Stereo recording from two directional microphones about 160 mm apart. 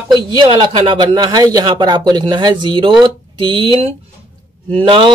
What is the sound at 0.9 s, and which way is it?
A man's voice, 25° right (ahead or behind).